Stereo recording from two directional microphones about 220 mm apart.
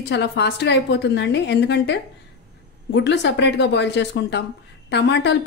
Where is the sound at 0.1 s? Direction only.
50° left (ahead or behind).